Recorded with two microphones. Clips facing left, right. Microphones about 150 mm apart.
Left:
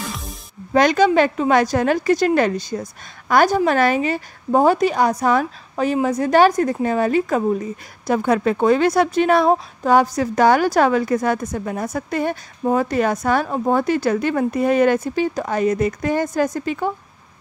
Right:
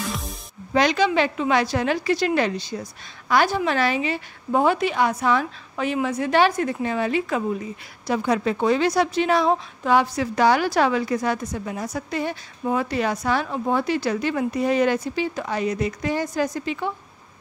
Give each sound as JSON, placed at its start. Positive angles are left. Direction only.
{"t": 0.7, "sound": "a woman's voice", "side_deg": 45}